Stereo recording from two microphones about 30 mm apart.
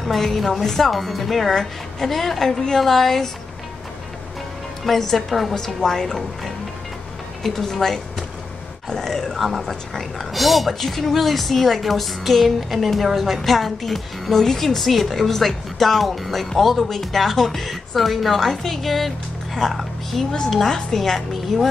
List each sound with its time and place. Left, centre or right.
0.0 s a woman's voice: centre
4.8 s speech: centre
5.8 s a woman's voice: centre
7.4 s a woman's voice: centre
14.3 s a woman's voice: centre
14.8 s speech: centre
18.4 s a woman's voice: centre